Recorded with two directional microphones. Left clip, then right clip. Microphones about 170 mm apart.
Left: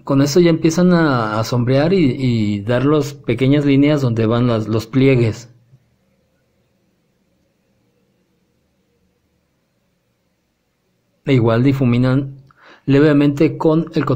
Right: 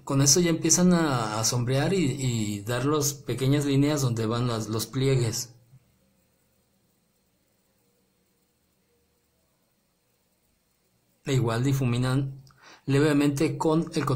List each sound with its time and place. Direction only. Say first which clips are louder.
0.0 s speech: left 10 dB; 25° left (ahead or behind)
11.2 s speech: left 13 dB; 25° left (ahead or behind)